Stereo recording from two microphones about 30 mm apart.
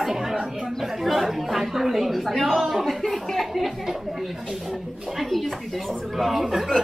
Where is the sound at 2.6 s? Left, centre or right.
Centre.